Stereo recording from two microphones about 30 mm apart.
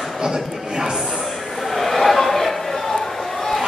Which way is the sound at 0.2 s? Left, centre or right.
Right.